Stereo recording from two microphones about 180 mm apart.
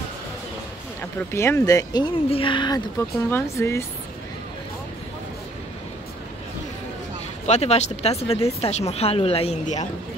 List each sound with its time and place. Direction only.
1.3 s speech: 15° left (ahead or behind)
2.2 s a woman's voice: 30° left (ahead or behind)
3.3 s speech: 15° left (ahead or behind)
7.4 s speech: 35° left (ahead or behind)